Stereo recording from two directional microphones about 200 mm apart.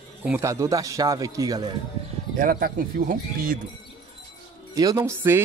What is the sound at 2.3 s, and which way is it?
Speech, 45° right (ahead or behind).